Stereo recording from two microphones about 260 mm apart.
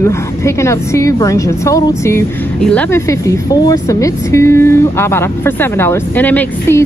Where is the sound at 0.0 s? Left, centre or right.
Centre.